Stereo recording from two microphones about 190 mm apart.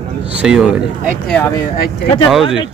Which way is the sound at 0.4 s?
5° right (ahead or behind).